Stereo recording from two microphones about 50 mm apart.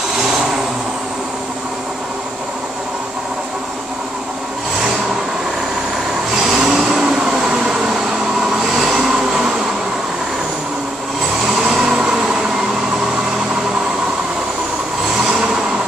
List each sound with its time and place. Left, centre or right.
6.4 s vehicle: centre
8.7 s train: centre
11.4 s vehicle: centre
15.2 s train: centre